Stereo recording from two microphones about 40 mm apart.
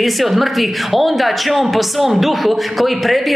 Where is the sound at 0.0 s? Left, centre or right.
Centre.